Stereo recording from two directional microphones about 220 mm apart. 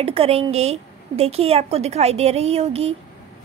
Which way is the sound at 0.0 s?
25° right (ahead or behind).